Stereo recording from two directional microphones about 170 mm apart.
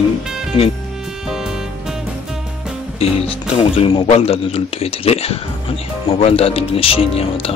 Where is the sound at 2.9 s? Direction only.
35° left (ahead or behind).